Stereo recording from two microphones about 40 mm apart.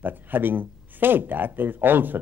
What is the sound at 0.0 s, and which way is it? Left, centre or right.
Speech, right.